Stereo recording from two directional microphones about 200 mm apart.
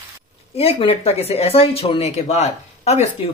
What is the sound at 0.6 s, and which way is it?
Speech, 30° left (ahead or behind).